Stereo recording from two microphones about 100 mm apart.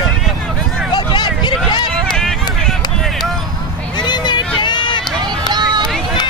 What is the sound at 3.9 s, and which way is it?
Vehicle, 45° left (ahead or behind).